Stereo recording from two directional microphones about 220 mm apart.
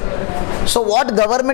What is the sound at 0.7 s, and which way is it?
Speech, 25° left (ahead or behind).